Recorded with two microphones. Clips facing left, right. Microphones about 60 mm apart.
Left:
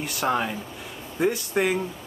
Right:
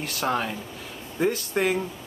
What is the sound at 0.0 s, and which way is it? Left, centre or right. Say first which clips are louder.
Speech: left 1 dB; centre.